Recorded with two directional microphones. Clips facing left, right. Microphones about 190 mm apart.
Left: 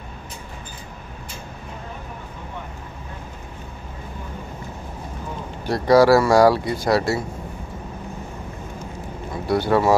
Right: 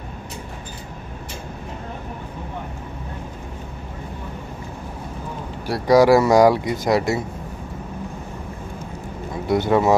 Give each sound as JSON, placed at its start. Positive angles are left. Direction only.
{"t": 5.7, "sound": "speech", "side_deg": -15}
{"t": 9.5, "sound": "speech", "side_deg": -20}